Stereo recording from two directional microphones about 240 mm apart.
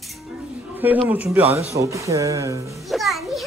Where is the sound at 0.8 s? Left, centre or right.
Centre.